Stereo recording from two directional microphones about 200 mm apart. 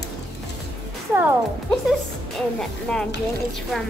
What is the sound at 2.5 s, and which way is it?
Speech, 5° left (ahead or behind).